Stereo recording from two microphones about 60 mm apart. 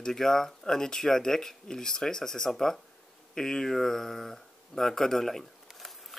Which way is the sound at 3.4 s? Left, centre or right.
Centre.